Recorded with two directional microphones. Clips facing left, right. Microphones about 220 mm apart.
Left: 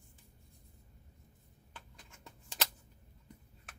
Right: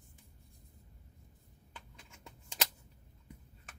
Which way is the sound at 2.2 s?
Centre (ahead or behind).